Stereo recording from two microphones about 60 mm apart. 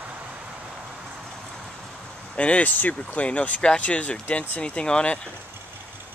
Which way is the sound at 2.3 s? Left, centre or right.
Centre.